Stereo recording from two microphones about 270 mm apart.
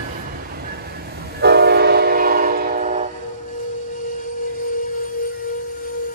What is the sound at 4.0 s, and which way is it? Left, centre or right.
Music, left.